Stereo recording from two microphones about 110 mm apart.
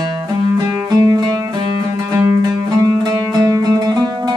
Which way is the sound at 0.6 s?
30° right (ahead or behind).